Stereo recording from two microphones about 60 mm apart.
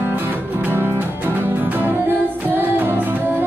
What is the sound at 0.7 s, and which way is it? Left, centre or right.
Music, right.